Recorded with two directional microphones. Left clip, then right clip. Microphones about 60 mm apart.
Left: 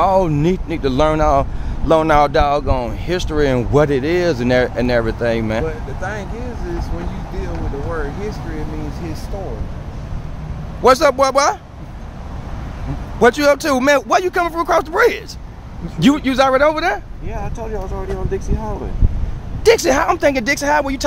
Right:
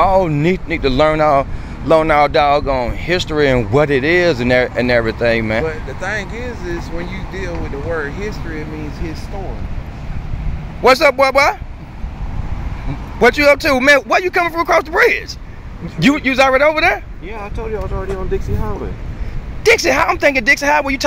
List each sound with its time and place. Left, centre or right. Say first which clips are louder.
0.0 s vehicle: right 2 dB; centre
0.4 s speech: right 2 dB; centre
2.7 s speech: right 3 dB; left
10.8 s a man's voice: right 1 dB; centre
13.3 s speech: right 5 dB; left
19.6 s speech: right 1 dB; left
20.2 s speech: right 3 dB; left